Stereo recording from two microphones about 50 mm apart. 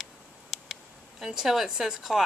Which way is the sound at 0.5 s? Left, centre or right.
Centre.